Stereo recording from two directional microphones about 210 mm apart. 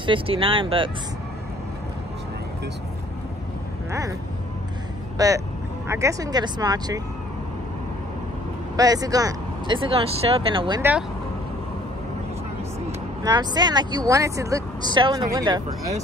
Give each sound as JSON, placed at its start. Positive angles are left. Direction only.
{"t": 0.0, "sound": "speech", "side_deg": -25}
{"t": 5.1, "sound": "speech", "side_deg": -15}
{"t": 8.7, "sound": "speech", "side_deg": -15}
{"t": 10.8, "sound": "speech", "side_deg": -10}
{"t": 13.2, "sound": "speech", "side_deg": -20}